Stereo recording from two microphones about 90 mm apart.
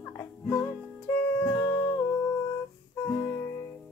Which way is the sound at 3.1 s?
30° left (ahead or behind).